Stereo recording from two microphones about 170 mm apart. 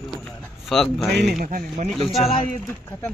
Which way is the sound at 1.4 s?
55° right (ahead or behind).